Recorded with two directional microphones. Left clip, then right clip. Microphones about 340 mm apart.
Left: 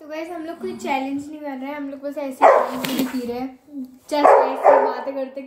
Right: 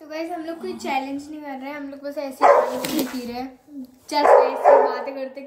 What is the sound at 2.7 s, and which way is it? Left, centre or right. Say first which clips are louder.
Speech: even; centre.